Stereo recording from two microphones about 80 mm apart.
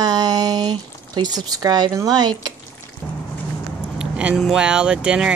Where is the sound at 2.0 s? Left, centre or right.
Right.